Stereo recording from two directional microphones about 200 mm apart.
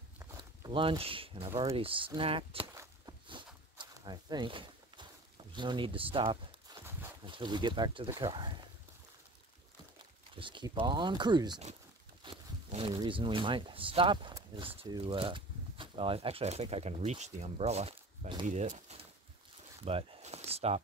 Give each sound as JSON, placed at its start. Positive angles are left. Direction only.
{"t": 0.2, "sound": "speech", "side_deg": -20}
{"t": 2.6, "sound": "walk", "side_deg": -15}
{"t": 3.7, "sound": "a sound", "side_deg": -20}
{"t": 7.2, "sound": "speech", "side_deg": -25}
{"t": 10.3, "sound": "speech", "side_deg": -25}
{"t": 19.8, "sound": "a sound", "side_deg": -30}